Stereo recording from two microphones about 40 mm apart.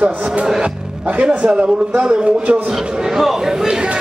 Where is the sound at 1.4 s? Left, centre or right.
Right.